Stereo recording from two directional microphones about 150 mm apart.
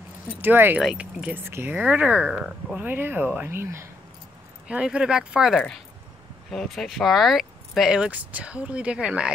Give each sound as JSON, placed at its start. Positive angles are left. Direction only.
{"t": 0.4, "sound": "speech", "side_deg": -15}
{"t": 4.6, "sound": "speech", "side_deg": -5}